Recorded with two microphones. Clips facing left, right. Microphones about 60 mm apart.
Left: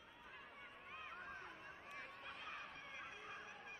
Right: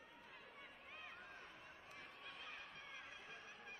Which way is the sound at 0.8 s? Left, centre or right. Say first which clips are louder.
Left 3 dB; centre.